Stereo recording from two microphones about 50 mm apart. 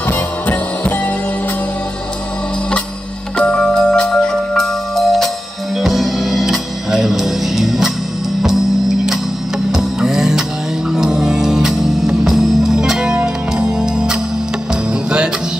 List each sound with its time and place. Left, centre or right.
0.1 s music: left
3.3 s music: centre